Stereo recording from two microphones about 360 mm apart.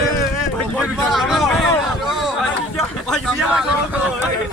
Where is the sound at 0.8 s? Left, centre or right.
Centre.